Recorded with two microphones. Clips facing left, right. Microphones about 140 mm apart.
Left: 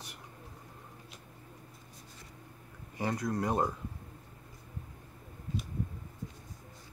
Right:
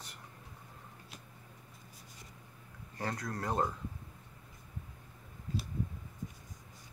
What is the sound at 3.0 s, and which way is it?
Speech, 15° left (ahead or behind).